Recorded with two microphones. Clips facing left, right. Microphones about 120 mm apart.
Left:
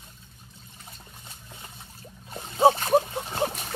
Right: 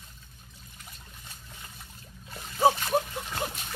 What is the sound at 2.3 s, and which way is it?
Splash, 25° left (ahead or behind).